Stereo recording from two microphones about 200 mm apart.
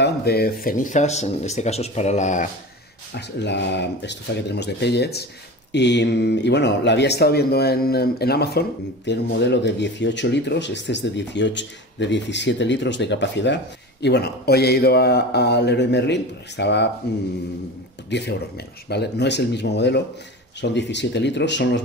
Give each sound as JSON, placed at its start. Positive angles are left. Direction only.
{"t": 0.0, "sound": "speech", "side_deg": 50}
{"t": 3.2, "sound": "speech", "side_deg": 60}
{"t": 18.1, "sound": "speech", "side_deg": 60}